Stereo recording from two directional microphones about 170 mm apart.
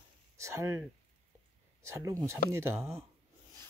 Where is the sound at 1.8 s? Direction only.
15° right (ahead or behind).